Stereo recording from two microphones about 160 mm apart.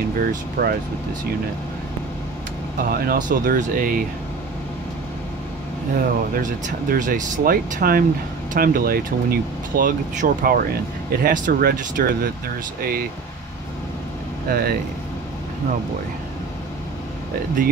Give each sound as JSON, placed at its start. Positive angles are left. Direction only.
{"t": 0.2, "sound": "speech", "side_deg": -70}
{"t": 3.1, "sound": "speech", "side_deg": -60}
{"t": 5.9, "sound": "speech", "side_deg": -55}
{"t": 14.5, "sound": "speech", "side_deg": -70}